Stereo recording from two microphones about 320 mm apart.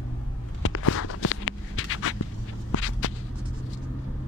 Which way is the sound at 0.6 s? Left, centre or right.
Left.